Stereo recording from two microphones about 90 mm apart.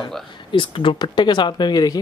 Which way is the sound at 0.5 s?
70° left (ahead or behind).